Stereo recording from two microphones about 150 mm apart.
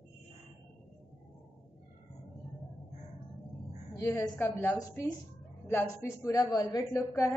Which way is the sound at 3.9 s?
15° left (ahead or behind).